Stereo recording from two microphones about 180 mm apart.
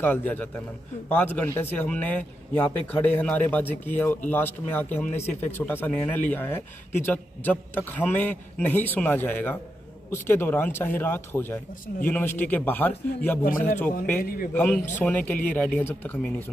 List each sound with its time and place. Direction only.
0.0 s speech: 10° left (ahead or behind)
14.2 s a man's voice: 55° left (ahead or behind)
14.5 s a man's voice: 5° left (ahead or behind)